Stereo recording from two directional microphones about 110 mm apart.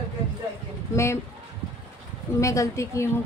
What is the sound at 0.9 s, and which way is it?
Speech, 25° left (ahead or behind).